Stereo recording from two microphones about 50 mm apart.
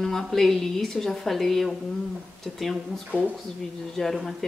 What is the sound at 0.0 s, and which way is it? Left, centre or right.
Speech, centre.